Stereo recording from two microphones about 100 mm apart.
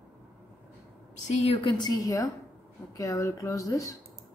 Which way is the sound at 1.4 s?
90° left.